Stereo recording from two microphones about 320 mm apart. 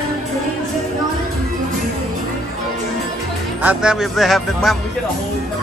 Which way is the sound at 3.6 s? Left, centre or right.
Centre.